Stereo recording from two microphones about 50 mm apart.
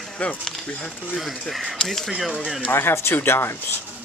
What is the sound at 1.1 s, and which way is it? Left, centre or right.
Speech, centre.